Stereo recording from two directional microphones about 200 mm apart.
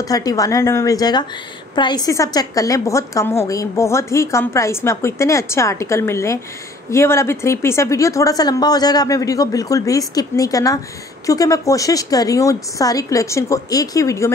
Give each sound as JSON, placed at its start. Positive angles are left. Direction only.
{"t": 0.0, "sound": "a woman's voice", "side_deg": 20}